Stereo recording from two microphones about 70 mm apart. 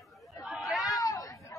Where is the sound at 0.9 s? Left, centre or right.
Left.